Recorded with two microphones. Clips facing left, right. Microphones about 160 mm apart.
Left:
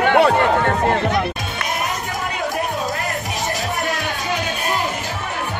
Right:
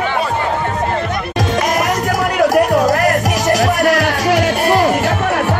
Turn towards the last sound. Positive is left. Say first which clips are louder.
# right 10 dB
turn(degrees=-75)  # may be behind; listen again after turning